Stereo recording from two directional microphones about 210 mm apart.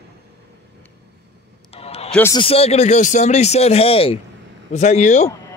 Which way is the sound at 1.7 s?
30° left (ahead or behind).